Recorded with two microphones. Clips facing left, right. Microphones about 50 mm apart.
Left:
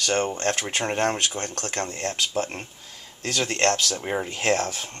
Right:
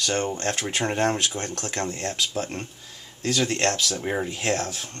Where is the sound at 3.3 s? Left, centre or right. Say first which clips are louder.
Left 1 dB; left.